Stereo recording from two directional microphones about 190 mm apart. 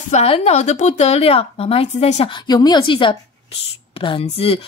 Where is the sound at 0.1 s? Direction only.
35° left (ahead or behind).